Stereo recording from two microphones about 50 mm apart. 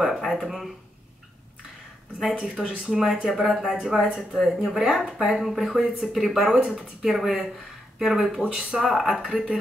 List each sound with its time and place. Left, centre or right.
0.0 s speech: centre
2.5 s speech: centre
8.4 s speech: centre
8.8 s speech: centre